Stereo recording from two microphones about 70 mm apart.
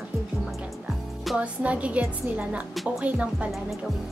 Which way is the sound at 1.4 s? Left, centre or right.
Centre.